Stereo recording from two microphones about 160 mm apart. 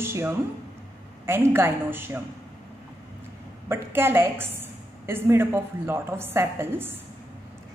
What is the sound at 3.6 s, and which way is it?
A man's voice, 15° right (ahead or behind).